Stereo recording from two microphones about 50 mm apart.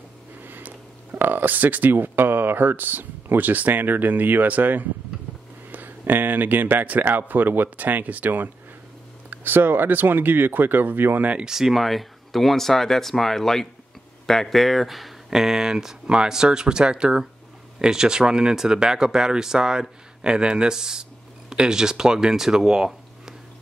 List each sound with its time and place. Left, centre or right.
0.4 s speech: right
11.4 s speech: centre